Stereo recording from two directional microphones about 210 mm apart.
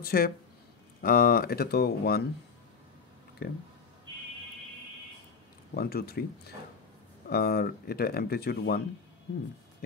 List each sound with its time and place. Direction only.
0.0 s speech: 45° left (ahead or behind)
3.4 s speech: 50° left (ahead or behind)
5.8 s speech: 45° left (ahead or behind)
7.2 s speech: 45° left (ahead or behind)